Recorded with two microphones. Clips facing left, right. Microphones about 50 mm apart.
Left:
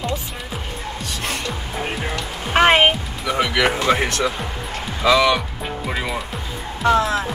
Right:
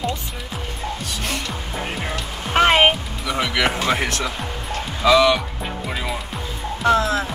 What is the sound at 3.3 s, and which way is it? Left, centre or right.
Speech, centre.